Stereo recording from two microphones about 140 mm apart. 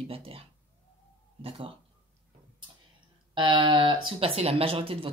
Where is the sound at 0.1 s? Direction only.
40° right (ahead or behind).